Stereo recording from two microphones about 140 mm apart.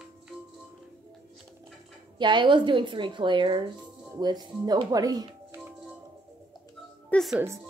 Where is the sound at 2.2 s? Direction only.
35° right (ahead or behind).